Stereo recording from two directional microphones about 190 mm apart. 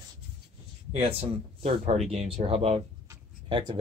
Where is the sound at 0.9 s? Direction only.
30° right (ahead or behind).